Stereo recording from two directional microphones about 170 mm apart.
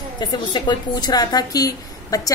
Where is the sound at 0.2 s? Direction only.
25° left (ahead or behind).